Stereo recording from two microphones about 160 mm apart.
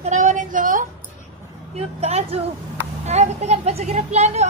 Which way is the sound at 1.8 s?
40° right (ahead or behind).